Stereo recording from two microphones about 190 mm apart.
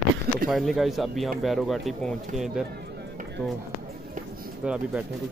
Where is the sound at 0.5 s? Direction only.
Centre (ahead or behind).